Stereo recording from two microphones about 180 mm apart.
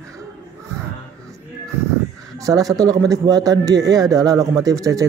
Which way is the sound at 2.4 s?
20° right (ahead or behind).